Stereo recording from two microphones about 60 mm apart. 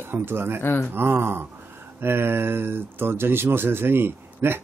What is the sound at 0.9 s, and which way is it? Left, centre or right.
Speech, right.